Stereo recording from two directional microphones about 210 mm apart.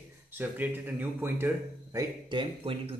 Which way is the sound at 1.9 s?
20° right (ahead or behind).